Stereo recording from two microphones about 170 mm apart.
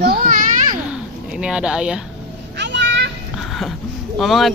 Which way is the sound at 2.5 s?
90° right.